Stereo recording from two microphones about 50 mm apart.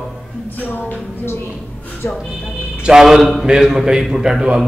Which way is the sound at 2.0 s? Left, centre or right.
Left.